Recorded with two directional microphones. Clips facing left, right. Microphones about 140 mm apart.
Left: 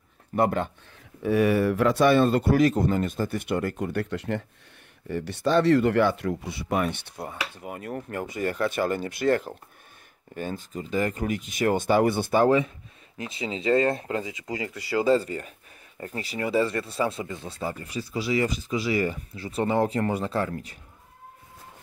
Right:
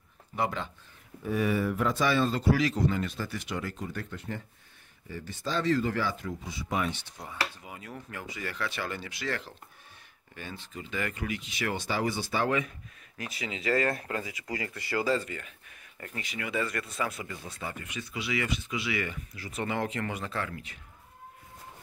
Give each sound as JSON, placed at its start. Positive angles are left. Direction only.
{"t": 0.4, "sound": "speech", "side_deg": 50}
{"t": 1.2, "sound": "speech", "side_deg": 70}
{"t": 5.0, "sound": "speech", "side_deg": 65}
{"t": 12.4, "sound": "speech", "side_deg": 30}
{"t": 15.0, "sound": "speech", "side_deg": 35}